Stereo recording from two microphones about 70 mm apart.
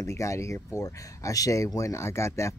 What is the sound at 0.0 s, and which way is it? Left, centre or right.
Speech, left.